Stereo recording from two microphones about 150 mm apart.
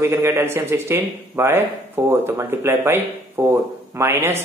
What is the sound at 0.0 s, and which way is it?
A man's voice, 15° right (ahead or behind).